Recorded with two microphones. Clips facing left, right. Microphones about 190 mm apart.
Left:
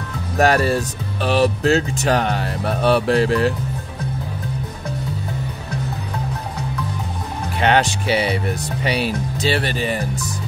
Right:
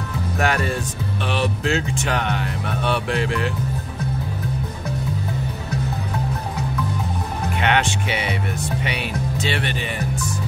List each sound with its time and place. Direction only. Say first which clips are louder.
0.4 s speech: left 7 dB; 35° left (ahead or behind)
7.6 s speech: left 5 dB; 35° left (ahead or behind)